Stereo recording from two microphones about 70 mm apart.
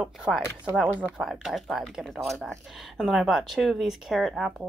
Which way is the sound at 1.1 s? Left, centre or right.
Centre.